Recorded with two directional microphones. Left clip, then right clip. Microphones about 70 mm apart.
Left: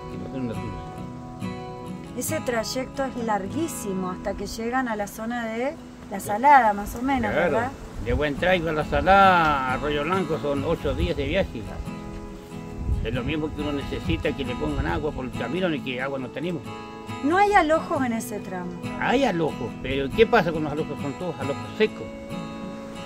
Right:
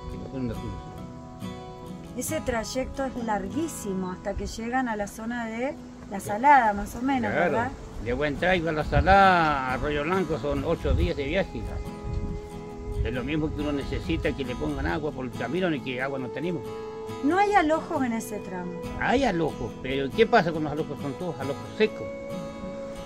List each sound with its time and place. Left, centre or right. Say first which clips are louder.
2.1 s speech: left 3 dB; left
7.2 s speech: left 2 dB; right
13.0 s speech: left 1 dB; right
17.3 s speech: left 3 dB; left
18.9 s speech: left 2 dB; right